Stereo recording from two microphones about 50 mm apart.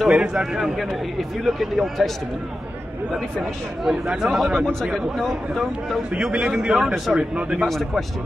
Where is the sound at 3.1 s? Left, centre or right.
Centre.